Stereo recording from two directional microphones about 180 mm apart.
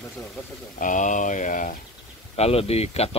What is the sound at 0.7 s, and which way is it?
Speech, 45° left (ahead or behind).